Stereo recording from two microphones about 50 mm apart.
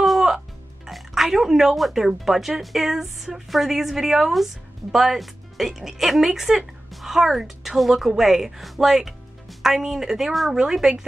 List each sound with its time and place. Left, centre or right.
0.0 s music: centre
0.8 s a woman's voice: centre